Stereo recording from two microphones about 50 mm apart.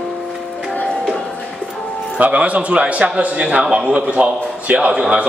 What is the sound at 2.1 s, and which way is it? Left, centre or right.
A man's voice, right.